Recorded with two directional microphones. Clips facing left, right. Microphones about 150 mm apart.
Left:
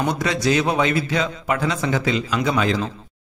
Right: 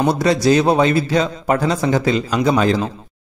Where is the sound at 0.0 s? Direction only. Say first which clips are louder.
Right 6 dB; 35° right (ahead or behind).